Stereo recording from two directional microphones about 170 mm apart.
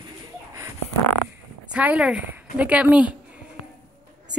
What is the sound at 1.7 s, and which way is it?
A woman's voice, 5° right (ahead or behind).